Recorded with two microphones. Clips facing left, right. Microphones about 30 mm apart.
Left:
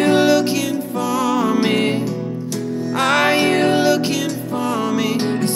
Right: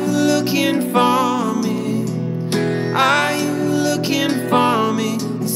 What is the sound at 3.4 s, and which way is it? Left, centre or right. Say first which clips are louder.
Music: left 4 dB; left.